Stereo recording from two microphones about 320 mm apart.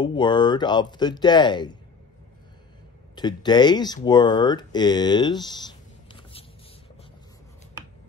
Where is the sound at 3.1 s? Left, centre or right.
Centre.